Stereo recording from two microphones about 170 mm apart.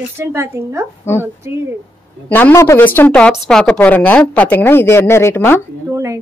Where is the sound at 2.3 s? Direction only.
15° left (ahead or behind).